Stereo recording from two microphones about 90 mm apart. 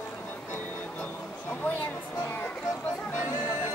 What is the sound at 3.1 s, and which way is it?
Music, 35° left (ahead or behind).